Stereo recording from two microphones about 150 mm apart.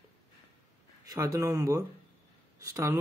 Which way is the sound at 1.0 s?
20° right (ahead or behind).